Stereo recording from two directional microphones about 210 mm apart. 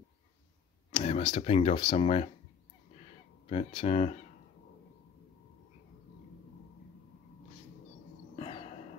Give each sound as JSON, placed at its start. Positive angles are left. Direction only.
{"t": 0.9, "sound": "speech", "side_deg": 30}
{"t": 3.4, "sound": "speech", "side_deg": 30}
{"t": 8.4, "sound": "a sound", "side_deg": 30}